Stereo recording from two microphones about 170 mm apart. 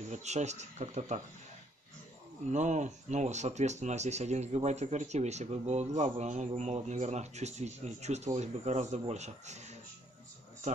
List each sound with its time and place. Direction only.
0.1 s speech: 40° right (ahead or behind)
2.5 s speech: 45° right (ahead or behind)